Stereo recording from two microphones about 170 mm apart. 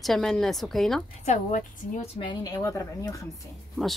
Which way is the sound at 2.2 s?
25° left (ahead or behind).